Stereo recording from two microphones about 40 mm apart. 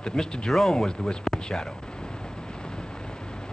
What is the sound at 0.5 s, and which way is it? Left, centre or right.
Speech, centre.